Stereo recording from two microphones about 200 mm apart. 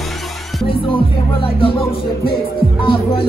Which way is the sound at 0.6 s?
25° left (ahead or behind).